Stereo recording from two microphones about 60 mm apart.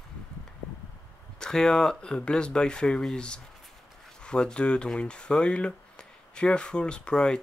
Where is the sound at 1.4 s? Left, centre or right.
Centre.